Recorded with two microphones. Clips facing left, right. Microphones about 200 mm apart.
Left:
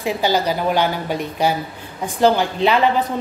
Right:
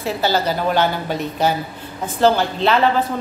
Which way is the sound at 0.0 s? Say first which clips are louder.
Left 1 dB; 15° left (ahead or behind).